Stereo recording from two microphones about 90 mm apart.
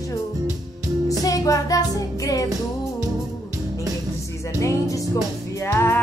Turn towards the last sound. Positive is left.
turn(degrees=30)  # may be behind; listen again after turning